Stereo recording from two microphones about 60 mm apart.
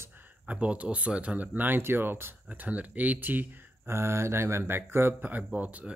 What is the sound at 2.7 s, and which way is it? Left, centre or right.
Speech, right.